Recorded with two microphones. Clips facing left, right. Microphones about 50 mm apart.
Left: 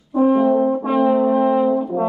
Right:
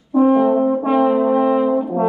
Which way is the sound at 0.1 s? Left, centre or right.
Centre.